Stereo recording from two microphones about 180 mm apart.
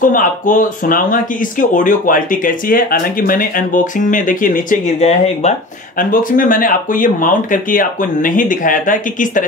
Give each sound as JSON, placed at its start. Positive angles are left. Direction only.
{"t": 0.0, "sound": "speech", "side_deg": 50}
{"t": 5.9, "sound": "speech", "side_deg": 50}